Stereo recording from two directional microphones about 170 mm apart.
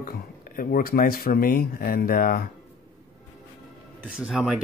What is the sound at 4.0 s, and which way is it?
Speech, 5° right (ahead or behind).